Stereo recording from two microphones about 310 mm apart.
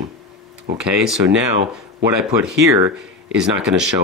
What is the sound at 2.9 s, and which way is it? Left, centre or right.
Speech, centre.